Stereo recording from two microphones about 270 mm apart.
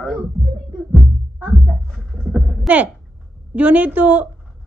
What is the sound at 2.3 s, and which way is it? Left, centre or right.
A woman's voice, centre.